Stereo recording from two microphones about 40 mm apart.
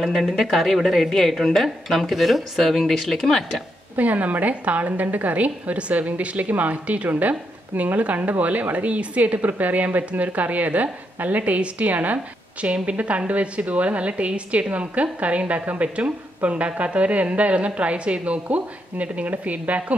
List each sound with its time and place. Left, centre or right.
0.0 s a woman's voice: centre
2.6 s speech: centre
3.9 s a woman's voice: right